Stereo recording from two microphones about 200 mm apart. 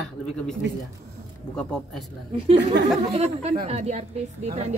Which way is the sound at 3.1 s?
35° right (ahead or behind).